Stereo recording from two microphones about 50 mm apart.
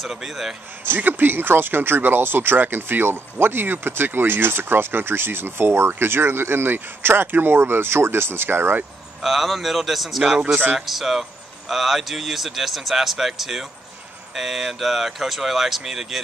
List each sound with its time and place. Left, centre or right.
0.0 s speech: centre
0.8 s speech: right
9.2 s speech: centre
10.4 s speech: right
10.9 s speech: centre